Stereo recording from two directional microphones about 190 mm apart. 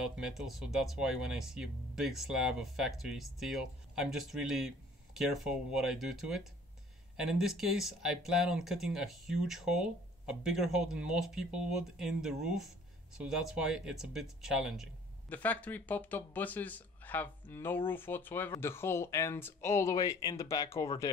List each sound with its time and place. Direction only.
0.0 s speech: centre (ahead or behind)
15.2 s speech: 10° left (ahead or behind)